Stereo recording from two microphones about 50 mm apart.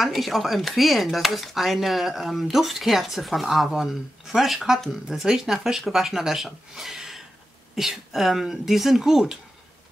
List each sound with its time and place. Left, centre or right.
0.0 s speech: centre
5.0 s speech: centre